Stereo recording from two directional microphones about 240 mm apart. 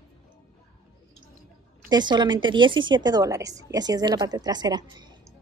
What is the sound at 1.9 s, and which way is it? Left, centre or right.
A woman's voice, centre.